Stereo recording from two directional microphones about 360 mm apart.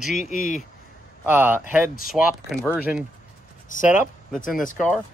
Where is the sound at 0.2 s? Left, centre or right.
Left.